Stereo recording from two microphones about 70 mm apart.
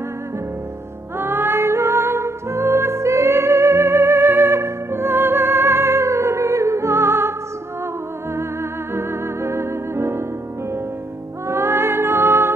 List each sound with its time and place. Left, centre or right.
1.1 s music: right
8.9 s music: right
11.4 s music: right